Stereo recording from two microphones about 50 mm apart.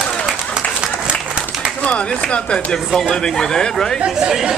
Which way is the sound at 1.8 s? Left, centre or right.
Left.